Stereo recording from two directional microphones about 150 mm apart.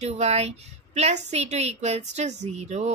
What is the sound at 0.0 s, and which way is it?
Speech, 45° right (ahead or behind).